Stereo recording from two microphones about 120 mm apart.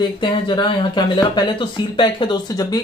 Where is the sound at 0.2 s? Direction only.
40° left (ahead or behind).